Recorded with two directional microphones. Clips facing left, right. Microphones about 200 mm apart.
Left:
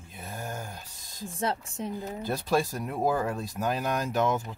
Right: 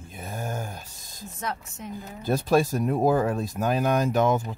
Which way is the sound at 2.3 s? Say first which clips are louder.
Right 6 dB; 50° right (ahead or behind).